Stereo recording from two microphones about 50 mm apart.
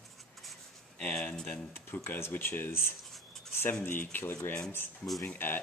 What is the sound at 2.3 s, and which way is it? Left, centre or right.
Speech, left.